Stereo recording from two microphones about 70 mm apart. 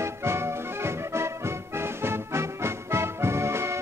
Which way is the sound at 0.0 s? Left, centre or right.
Right.